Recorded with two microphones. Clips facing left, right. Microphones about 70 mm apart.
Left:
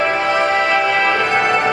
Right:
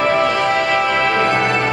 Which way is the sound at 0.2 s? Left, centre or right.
Left.